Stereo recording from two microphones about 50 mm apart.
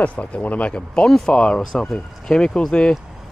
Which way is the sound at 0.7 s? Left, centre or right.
Centre.